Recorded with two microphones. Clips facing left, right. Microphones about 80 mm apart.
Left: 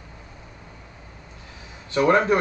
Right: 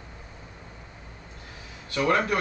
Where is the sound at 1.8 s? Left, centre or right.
Left.